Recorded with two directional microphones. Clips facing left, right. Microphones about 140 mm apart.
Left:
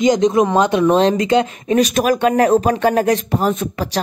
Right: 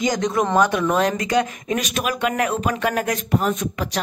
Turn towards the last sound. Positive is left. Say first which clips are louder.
# left 4 dB
turn(degrees=35)  # may be behind; listen again after turning